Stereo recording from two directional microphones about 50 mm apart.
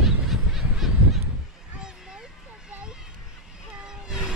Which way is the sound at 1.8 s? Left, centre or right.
Centre.